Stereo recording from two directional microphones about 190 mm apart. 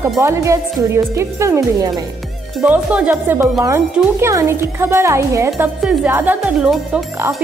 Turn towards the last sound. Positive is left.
turn(degrees=0)  # may be behind; listen again after turning